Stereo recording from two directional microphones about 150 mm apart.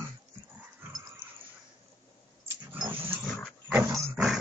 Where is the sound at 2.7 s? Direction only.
15° right (ahead or behind).